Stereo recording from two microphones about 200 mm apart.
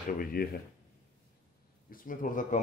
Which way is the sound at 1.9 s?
45° left (ahead or behind).